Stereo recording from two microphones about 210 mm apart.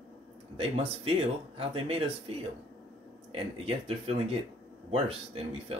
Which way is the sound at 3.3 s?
25° right (ahead or behind).